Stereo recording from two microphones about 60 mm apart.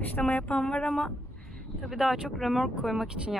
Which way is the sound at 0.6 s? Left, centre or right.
Centre.